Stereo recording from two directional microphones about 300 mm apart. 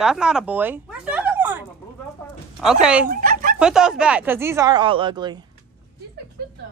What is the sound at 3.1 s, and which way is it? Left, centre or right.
Chicken, right.